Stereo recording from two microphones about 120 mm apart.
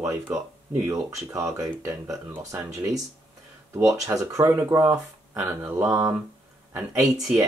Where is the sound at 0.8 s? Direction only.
25° right (ahead or behind).